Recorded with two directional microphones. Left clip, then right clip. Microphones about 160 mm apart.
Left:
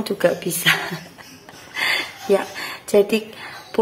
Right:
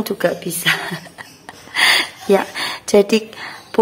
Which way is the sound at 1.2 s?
25° right (ahead or behind).